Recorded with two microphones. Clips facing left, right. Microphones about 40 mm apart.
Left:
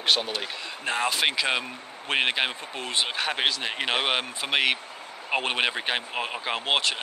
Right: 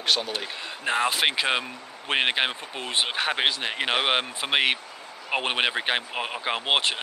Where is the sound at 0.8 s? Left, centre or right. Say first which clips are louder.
Right 2 dB; centre.